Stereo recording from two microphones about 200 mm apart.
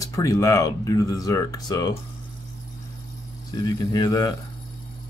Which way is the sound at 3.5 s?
20° left (ahead or behind).